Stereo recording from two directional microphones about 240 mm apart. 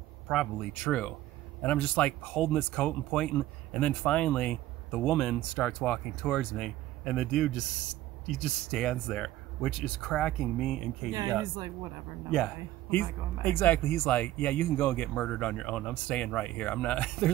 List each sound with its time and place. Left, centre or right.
0.3 s speech: centre
11.1 s speech: centre
13.4 s speech: centre